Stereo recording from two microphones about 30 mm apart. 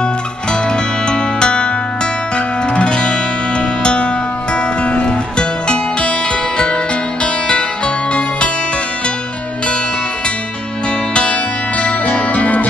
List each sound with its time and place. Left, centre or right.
0.0 s music: left
7.4 s music: left
11.1 s music: left